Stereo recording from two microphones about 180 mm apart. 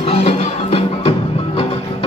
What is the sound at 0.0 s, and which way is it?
Music, 35° left (ahead or behind).